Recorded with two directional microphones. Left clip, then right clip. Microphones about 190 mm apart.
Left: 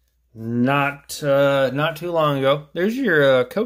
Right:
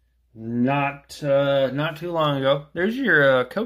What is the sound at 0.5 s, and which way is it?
Speech, 35° left (ahead or behind).